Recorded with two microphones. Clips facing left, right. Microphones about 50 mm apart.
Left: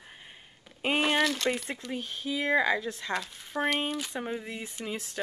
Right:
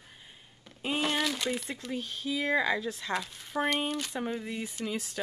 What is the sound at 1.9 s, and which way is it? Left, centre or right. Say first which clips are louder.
Speech: even; left.